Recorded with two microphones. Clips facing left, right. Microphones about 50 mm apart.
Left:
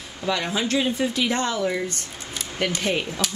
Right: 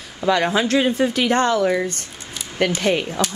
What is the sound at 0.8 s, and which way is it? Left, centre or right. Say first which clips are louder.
Speech: right 5 dB; right.